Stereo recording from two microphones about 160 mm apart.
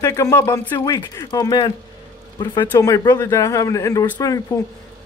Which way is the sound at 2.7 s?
20° left (ahead or behind).